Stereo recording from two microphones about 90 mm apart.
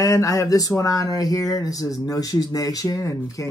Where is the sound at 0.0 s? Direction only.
40° left (ahead or behind).